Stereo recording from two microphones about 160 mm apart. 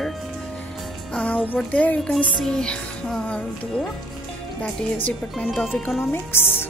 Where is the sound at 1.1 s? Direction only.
10° left (ahead or behind).